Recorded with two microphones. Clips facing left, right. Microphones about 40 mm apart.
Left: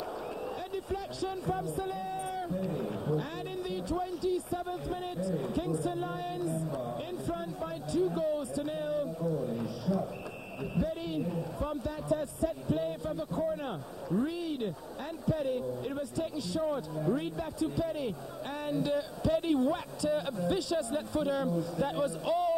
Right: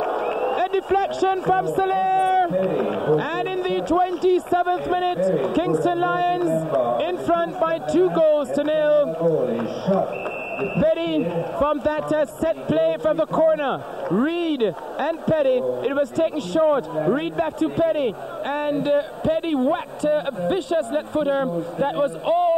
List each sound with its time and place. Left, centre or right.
0.0 s a man's voice: right